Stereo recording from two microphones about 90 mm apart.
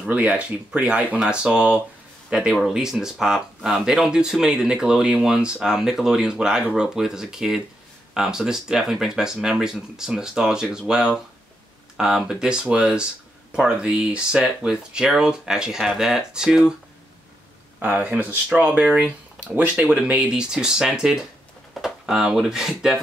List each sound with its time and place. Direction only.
0.0 s speech: 15° right (ahead or behind)
12.3 s speech: 10° right (ahead or behind)
17.7 s speech: 15° right (ahead or behind)